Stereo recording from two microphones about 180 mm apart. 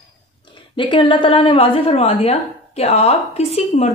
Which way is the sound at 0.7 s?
25° left (ahead or behind).